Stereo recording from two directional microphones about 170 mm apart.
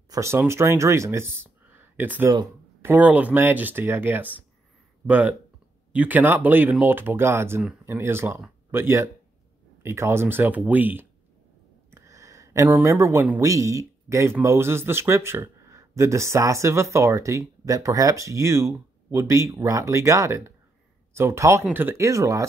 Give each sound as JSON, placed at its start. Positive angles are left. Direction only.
{"t": 0.1, "sound": "speech", "side_deg": -15}
{"t": 1.3, "sound": "a sound", "side_deg": -15}
{"t": 2.8, "sound": "speech", "side_deg": -10}